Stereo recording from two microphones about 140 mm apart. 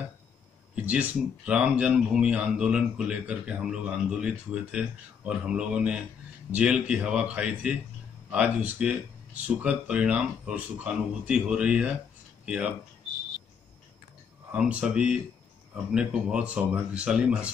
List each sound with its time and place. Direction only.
0.7 s speech: 10° right (ahead or behind)
14.5 s speech: 10° right (ahead or behind)